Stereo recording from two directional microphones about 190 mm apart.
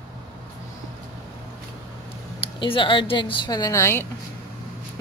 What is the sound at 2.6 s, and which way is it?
A woman's voice, 25° left (ahead or behind).